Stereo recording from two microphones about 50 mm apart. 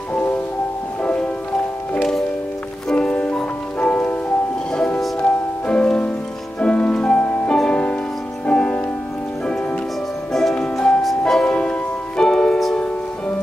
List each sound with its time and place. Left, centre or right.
2.9 s music: centre
3.9 s music: left
10.6 s music: centre
11.0 s music: centre
11.4 s music: left